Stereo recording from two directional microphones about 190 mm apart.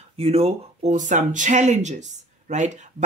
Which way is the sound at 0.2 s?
30° right (ahead or behind).